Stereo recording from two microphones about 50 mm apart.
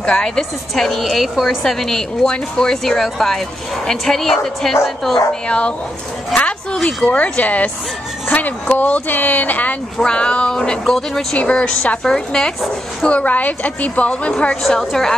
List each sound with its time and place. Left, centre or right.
0.0 s a woman's voice: centre
5.5 s a woman's voice: left
6.3 s a sound: left
6.8 s speech: centre
7.1 s speech: left
10.0 s a woman's voice: left
11.3 s a woman's voice: left
12.0 s a woman's voice: centre
13.0 s a woman's voice: left
14.7 s a woman's voice: centre